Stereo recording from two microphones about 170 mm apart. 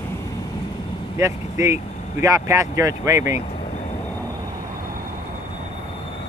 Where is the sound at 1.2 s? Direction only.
15° right (ahead or behind).